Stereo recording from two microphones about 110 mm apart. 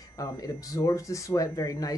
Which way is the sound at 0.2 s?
30° left (ahead or behind).